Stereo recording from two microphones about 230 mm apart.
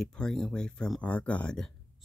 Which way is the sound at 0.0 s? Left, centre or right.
Centre.